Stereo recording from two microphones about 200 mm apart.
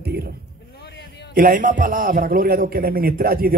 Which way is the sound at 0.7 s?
55° left (ahead or behind).